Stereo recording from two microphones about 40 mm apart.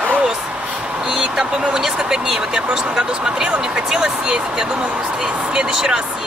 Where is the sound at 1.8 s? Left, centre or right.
Centre.